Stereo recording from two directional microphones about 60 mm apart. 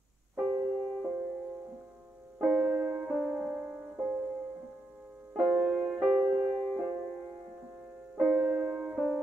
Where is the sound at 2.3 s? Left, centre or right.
Centre.